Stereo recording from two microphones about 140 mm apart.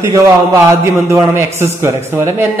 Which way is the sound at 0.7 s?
20° right (ahead or behind).